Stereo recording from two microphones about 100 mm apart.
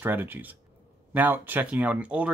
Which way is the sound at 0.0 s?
20° right (ahead or behind).